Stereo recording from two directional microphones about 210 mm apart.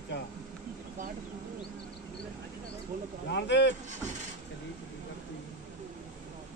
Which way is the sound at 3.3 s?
55° left (ahead or behind).